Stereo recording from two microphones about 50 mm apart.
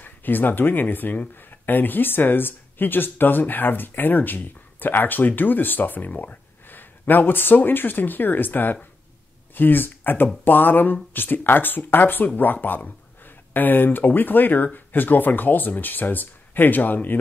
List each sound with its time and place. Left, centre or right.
0.0 s speech: left